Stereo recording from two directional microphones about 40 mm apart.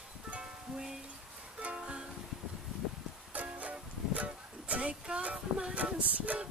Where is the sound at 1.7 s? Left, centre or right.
Right.